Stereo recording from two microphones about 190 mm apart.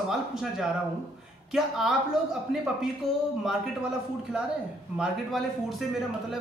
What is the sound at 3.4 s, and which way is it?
Speech, centre (ahead or behind).